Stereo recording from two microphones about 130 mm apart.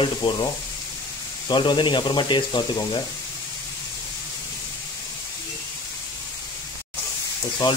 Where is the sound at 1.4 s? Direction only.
35° left (ahead or behind).